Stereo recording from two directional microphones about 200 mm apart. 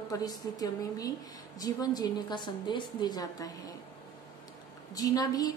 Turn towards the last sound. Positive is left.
turn(degrees=20)  # may be behind; listen again after turning